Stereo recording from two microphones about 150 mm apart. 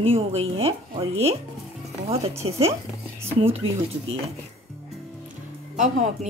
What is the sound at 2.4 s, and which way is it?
Speech, 45° right (ahead or behind).